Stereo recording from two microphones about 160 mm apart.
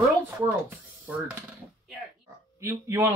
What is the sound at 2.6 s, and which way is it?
Speech, 15° right (ahead or behind).